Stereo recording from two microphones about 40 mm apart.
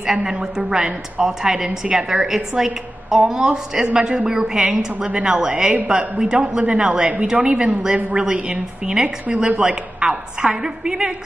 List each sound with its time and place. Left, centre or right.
0.0 s a woman's voice: centre